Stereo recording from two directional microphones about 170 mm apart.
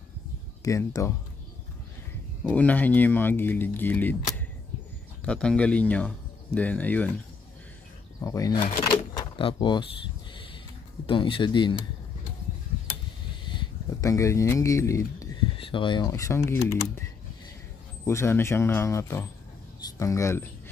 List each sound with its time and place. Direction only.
0.7 s speech: 20° left (ahead or behind)
2.5 s speech: 10° left (ahead or behind)
5.2 s speech: 5° left (ahead or behind)
8.2 s speech: 20° left (ahead or behind)
11.1 s speech: 30° left (ahead or behind)
13.5 s a sound: 25° left (ahead or behind)
15.5 s a sound: 30° left (ahead or behind)
16.1 s speech: 15° left (ahead or behind)
18.0 s speech: 15° left (ahead or behind)